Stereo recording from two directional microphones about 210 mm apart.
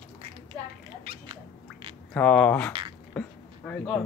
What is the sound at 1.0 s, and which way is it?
Cat, 25° right (ahead or behind).